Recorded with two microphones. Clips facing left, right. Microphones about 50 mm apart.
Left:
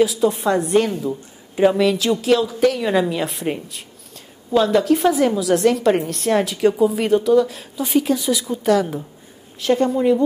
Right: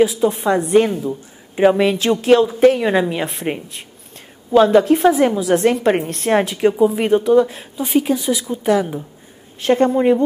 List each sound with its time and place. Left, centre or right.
0.0 s a woman's voice: right
9.6 s a woman's voice: right